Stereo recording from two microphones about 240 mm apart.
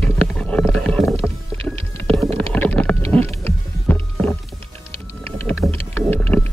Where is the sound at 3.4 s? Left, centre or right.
Centre.